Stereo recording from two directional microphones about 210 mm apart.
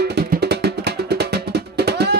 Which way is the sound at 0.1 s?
50° right (ahead or behind).